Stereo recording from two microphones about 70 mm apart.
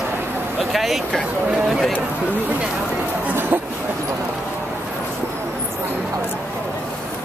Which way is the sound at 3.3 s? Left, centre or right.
Right.